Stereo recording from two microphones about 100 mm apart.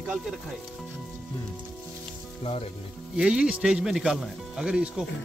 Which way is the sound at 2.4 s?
80° left.